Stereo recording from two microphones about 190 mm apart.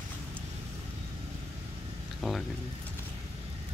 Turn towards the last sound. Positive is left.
turn(degrees=0)  # may be behind; listen again after turning